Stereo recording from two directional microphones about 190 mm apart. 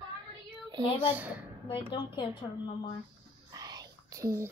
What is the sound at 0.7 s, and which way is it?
Speech, 20° right (ahead or behind).